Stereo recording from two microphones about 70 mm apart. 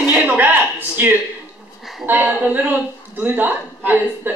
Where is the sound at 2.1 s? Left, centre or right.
Right.